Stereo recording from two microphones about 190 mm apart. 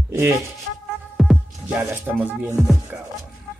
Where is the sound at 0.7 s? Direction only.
75° right (ahead or behind).